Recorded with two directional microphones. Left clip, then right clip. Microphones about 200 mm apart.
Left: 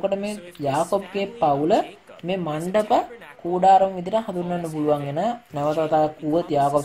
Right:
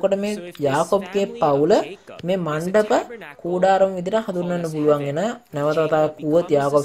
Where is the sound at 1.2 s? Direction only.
30° right (ahead or behind).